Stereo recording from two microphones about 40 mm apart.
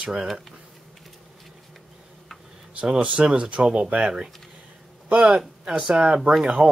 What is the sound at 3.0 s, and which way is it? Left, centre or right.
A man's voice, right.